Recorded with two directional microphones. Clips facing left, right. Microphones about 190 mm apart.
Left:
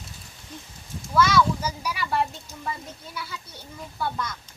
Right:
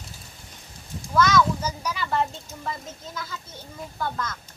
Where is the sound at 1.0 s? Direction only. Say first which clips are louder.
Even; 10° left (ahead or behind).